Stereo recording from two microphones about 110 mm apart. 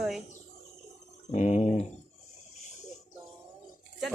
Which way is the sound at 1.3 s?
90° left.